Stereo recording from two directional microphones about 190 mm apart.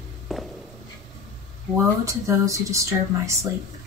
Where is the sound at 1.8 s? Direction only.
15° right (ahead or behind).